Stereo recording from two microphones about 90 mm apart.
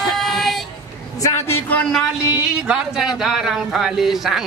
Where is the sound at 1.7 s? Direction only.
15° left (ahead or behind).